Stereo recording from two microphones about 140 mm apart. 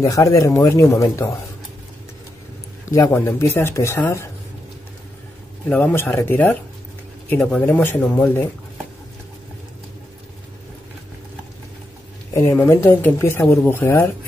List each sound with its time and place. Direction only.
0.0 s speech: 25° left (ahead or behind)
2.8 s speech: 20° left (ahead or behind)
5.7 s speech: 15° left (ahead or behind)
12.5 s speech: 15° left (ahead or behind)